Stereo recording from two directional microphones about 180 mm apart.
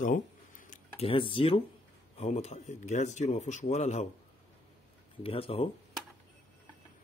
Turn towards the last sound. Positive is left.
turn(degrees=30)  # may be behind; listen again after turning